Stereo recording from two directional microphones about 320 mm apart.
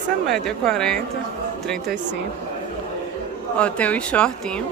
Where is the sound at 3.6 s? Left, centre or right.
Centre.